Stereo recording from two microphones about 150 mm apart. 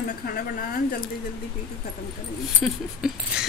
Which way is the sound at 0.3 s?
75° left (ahead or behind).